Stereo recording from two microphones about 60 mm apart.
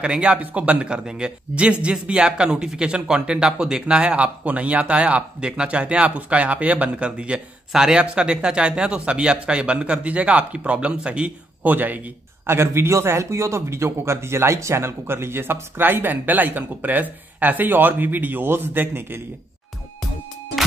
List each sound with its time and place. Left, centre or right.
0.0 s speech: centre
12.4 s a man's voice: right